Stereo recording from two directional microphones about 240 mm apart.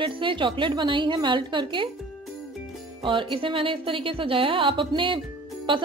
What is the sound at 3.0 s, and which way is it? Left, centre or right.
A woman's voice, right.